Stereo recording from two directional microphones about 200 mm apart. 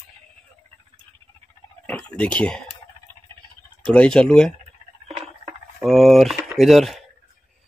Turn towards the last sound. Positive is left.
turn(degrees=0)  # may be behind; listen again after turning